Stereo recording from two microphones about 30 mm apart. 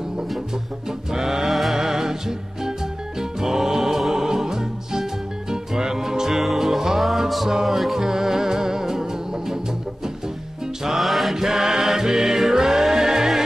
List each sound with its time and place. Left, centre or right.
0.8 s music: centre
1.5 s music: centre
1.8 s music: centre
11.0 s mantra: centre
11.3 s music: centre